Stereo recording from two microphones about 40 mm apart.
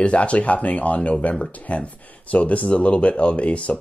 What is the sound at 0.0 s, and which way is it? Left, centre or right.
Speech, left.